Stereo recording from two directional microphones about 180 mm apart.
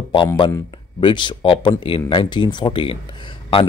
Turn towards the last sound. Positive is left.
turn(degrees=30)  # may be behind; listen again after turning